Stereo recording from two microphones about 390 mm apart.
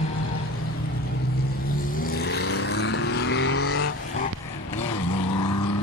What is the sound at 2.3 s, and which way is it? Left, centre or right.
Vehicle, left.